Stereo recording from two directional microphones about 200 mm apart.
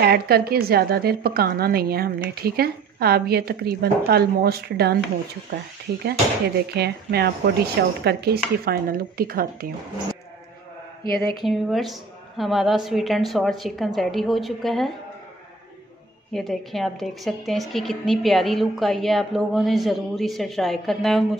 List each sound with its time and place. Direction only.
0.0 s a woman's voice: 50° right (ahead or behind)
6.0 s a woman's voice: 55° right (ahead or behind)
11.4 s a woman's voice: centre (ahead or behind)
16.3 s a woman's voice: centre (ahead or behind)